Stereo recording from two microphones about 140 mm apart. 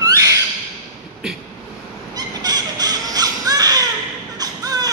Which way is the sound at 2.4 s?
25° right (ahead or behind).